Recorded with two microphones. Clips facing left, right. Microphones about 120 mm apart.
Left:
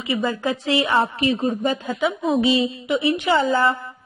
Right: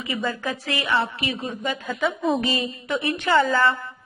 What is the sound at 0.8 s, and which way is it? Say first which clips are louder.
A woman's voice: left 2 dB; 40° left (ahead or behind).